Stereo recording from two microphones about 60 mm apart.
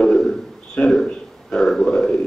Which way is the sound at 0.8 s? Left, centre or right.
Centre.